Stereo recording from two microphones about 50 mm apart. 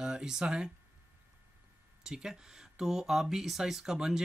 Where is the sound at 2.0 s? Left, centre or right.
Centre.